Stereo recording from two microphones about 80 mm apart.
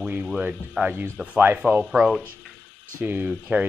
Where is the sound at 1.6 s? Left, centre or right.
Centre.